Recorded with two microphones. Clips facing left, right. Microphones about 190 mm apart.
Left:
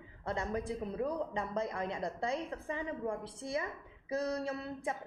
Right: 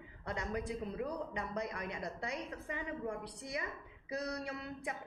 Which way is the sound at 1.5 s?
25° left (ahead or behind).